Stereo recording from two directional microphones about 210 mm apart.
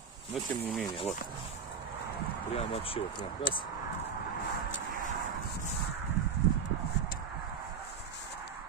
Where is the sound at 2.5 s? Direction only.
25° left (ahead or behind).